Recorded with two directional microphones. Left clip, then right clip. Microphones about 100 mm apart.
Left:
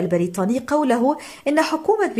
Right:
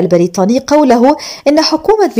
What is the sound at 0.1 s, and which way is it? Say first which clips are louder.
Speech: right 11 dB; 30° right (ahead or behind).